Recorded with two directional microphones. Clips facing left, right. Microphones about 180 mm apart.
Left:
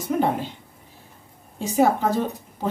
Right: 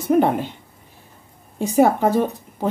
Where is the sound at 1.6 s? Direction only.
55° right (ahead or behind).